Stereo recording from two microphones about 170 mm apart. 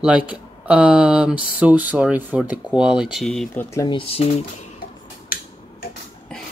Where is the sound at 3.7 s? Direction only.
25° left (ahead or behind).